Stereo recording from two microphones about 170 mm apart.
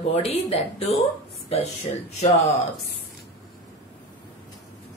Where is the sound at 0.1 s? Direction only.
35° left (ahead or behind).